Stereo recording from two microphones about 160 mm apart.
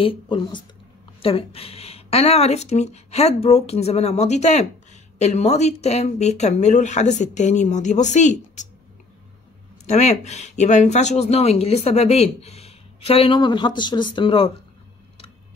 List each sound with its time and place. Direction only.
0.0 s speech: 35° left (ahead or behind); by 8.6 s 50° left (ahead or behind)
9.8 s speech: 45° left (ahead or behind)